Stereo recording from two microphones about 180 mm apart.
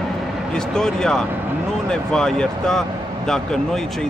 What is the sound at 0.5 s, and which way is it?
Speech, 5° left (ahead or behind).